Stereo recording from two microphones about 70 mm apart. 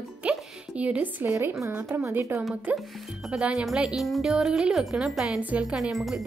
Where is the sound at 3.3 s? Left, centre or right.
Centre.